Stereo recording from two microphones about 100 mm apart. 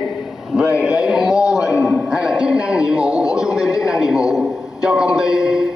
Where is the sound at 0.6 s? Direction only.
10° right (ahead or behind).